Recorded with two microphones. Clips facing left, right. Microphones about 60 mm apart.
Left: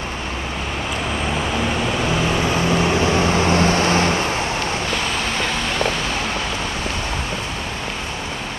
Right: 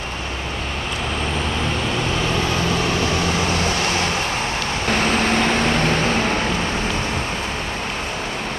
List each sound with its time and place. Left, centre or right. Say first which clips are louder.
3.1 s vehicle: left 3 dB; left
4.9 s vehicle: right 4 dB; right